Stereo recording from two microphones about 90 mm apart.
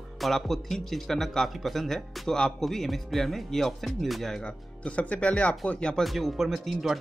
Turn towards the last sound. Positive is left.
turn(degrees=0)  # may be behind; listen again after turning